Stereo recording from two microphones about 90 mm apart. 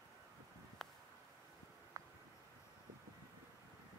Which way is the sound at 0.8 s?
5° left (ahead or behind).